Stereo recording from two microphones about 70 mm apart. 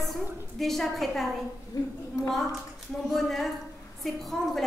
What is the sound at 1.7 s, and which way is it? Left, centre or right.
Speech, left.